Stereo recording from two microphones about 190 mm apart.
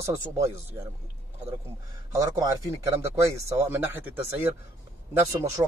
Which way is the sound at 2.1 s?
20° right (ahead or behind).